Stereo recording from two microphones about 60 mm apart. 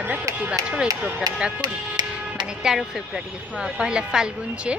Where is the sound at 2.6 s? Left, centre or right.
Centre.